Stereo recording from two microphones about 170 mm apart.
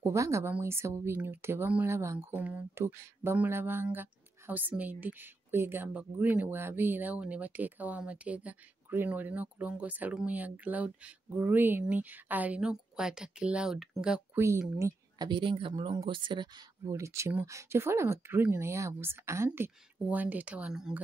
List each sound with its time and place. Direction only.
0.0 s speech: 15° right (ahead or behind)
14.4 s speech: 15° right (ahead or behind)